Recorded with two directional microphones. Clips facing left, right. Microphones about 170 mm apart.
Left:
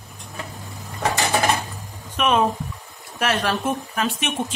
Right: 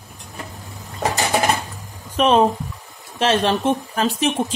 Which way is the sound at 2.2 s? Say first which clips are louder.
Right 4 dB; 30° right (ahead or behind).